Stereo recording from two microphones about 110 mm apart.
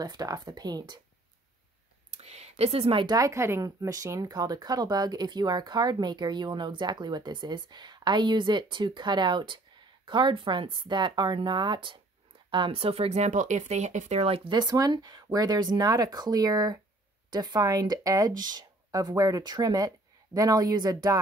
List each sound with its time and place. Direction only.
0.0 s speech: 35° right (ahead or behind)
2.1 s a sound: 75° right (ahead or behind); by 3.2 s 50° right (ahead or behind)
3.2 s speech: 25° right (ahead or behind); by 14.4 s 70° right (ahead or behind)
14.5 s speech: 40° right (ahead or behind)